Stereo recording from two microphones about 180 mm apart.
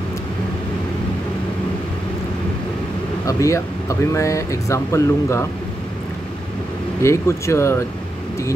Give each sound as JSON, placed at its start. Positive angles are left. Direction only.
{"t": 3.3, "sound": "speech", "side_deg": 15}
{"t": 7.0, "sound": "speech", "side_deg": 15}